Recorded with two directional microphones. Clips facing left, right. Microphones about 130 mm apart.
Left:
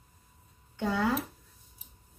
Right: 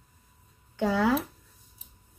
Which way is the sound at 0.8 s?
90° right.